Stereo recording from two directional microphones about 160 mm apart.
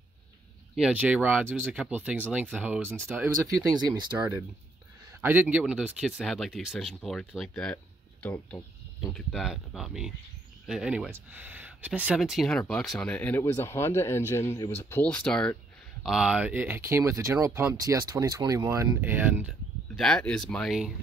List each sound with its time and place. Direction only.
0.7 s speech: 5° right (ahead or behind)
3.4 s speech: 25° right (ahead or behind)
5.2 s speech: 10° right (ahead or behind); by 15.5 s 5° left (ahead or behind)
16.0 s speech: 5° right (ahead or behind)
20.0 s speech: 5° left (ahead or behind)